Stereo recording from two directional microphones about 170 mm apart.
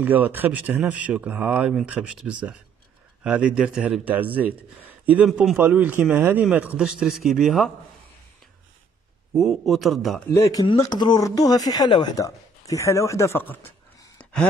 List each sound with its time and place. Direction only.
0.0 s a man's voice: 10° right (ahead or behind)
9.4 s a man's voice: centre (ahead or behind)
10.3 s speech: 20° left (ahead or behind)
13.7 s a sound: 10° left (ahead or behind)